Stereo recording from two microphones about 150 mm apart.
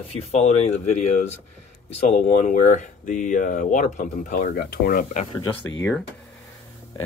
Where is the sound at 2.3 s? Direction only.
60° left (ahead or behind).